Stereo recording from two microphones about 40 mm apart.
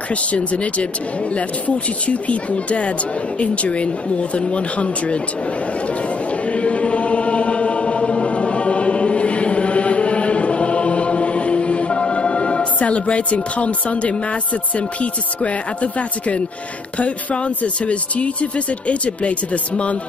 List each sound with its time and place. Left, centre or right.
0.1 s speech: left
2.0 s speech: left
6.4 s chant: left
17.0 s speech: left